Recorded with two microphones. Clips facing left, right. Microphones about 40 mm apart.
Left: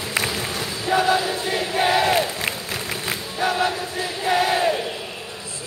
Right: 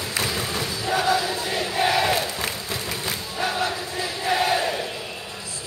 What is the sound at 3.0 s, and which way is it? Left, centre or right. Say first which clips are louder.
Battle cry: left 4 dB; left.